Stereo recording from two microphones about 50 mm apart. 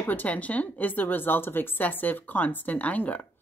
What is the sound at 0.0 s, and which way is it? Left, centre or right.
A woman's voice, left.